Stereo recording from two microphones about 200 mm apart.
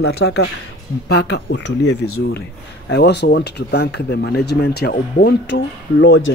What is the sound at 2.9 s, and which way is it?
Speech, 55° left (ahead or behind).